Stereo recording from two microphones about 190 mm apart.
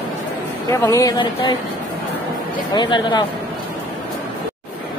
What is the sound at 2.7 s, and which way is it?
Speech, 25° left (ahead or behind).